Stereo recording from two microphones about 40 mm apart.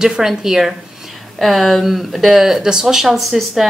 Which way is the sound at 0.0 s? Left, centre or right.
Centre.